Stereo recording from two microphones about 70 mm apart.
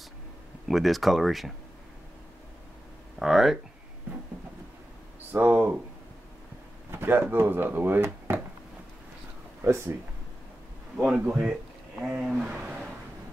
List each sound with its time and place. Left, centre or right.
0.7 s speech: centre
3.2 s speech: centre
5.3 s speech: right
6.9 s speech: right
9.6 s speech: right
11.0 s speech: centre